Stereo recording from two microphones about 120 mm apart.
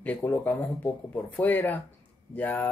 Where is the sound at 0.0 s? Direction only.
15° left (ahead or behind).